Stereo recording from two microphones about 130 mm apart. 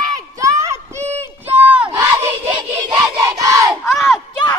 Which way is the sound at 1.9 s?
25° right (ahead or behind).